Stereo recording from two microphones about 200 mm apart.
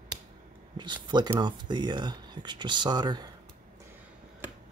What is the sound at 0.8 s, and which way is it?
Speech, 20° right (ahead or behind).